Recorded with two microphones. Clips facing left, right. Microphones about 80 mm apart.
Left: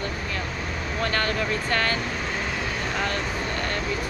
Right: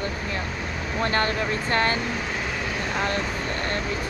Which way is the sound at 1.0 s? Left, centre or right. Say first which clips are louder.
Right 2 dB; right.